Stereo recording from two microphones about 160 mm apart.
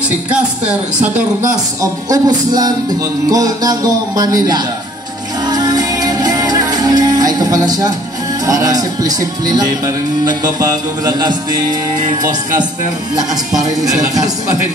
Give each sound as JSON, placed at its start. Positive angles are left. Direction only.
{"t": 0.7, "sound": "a woman's voice", "side_deg": -10}
{"t": 1.8, "sound": "speech", "side_deg": -25}
{"t": 5.5, "sound": "music", "side_deg": -25}
{"t": 8.5, "sound": "speech", "side_deg": -20}